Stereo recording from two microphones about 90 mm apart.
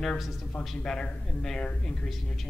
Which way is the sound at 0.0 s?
Centre (ahead or behind).